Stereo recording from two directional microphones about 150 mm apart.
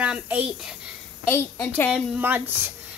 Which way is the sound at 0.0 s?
5° right (ahead or behind).